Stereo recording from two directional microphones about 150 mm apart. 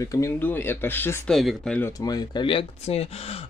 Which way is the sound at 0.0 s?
20° left (ahead or behind).